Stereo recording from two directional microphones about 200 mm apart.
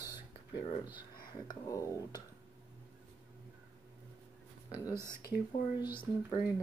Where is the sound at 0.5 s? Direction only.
25° left (ahead or behind).